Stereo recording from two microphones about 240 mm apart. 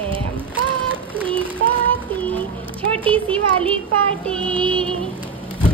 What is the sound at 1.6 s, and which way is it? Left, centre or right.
Child singing, right.